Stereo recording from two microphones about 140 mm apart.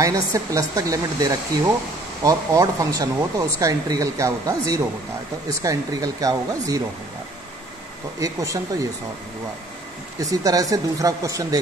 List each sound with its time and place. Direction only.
0.0 s speech: 25° right (ahead or behind)
8.2 s speech: 25° right (ahead or behind)
10.1 s speech: 25° right (ahead or behind)